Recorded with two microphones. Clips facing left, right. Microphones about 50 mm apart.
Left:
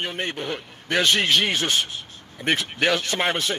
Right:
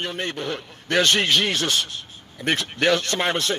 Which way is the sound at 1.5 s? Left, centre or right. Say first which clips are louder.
Even; left.